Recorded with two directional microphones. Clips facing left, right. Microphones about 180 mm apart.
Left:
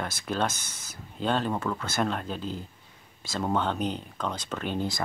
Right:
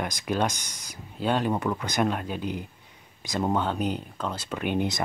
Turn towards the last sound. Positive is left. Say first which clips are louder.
# right 3 dB
turn(degrees=-15)  # may be behind; listen again after turning